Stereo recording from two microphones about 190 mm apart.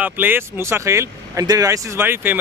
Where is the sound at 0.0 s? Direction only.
10° right (ahead or behind).